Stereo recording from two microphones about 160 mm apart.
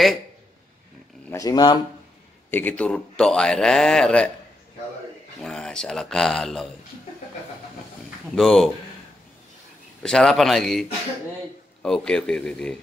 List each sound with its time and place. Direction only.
1.3 s speech: 25° left (ahead or behind)
2.5 s a man's voice: 10° left (ahead or behind)
5.4 s a man's voice: 5° left (ahead or behind)
8.4 s a man's voice: centre (ahead or behind)
10.0 s a man's voice: 5° left (ahead or behind)